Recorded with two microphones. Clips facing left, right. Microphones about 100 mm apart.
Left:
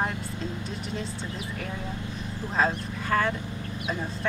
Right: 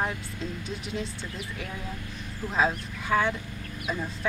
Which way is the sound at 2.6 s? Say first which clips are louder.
Even; centre (ahead or behind).